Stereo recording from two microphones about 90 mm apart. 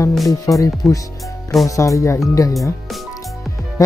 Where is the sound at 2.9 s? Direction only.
Centre (ahead or behind).